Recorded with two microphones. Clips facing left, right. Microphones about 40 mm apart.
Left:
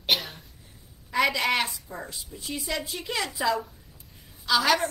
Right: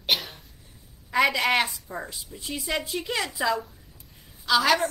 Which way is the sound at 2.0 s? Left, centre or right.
Right.